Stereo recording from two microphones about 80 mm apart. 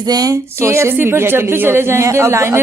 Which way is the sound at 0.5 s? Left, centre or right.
Right.